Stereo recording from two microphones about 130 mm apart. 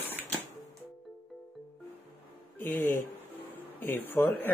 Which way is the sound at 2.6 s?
15° left (ahead or behind).